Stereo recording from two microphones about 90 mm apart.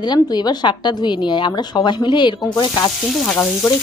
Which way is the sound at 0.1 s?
50° left (ahead or behind).